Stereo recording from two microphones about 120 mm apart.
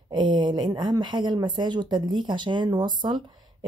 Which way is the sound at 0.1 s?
40° right (ahead or behind).